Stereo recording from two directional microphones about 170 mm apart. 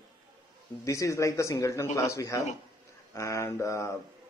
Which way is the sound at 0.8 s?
20° left (ahead or behind).